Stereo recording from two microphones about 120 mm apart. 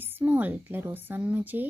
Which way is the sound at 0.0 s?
15° right (ahead or behind).